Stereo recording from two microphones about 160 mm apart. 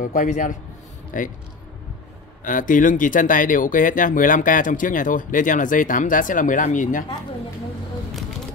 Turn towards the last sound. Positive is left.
turn(degrees=55)  # may be behind; listen again after turning